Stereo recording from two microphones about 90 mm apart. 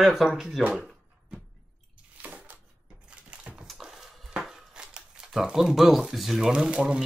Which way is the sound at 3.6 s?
5° right (ahead or behind).